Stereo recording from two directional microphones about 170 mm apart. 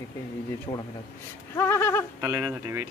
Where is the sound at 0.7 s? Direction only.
30° left (ahead or behind).